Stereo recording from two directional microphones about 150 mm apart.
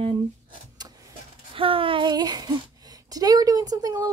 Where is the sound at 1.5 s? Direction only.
35° right (ahead or behind).